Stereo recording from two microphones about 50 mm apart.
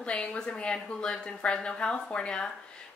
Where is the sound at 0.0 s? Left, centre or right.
Left.